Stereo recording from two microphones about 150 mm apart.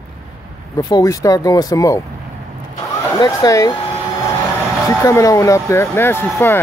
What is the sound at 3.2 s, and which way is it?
Speech, 25° left (ahead or behind).